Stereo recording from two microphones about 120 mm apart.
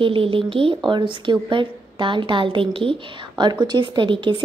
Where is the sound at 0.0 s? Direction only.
45° right (ahead or behind).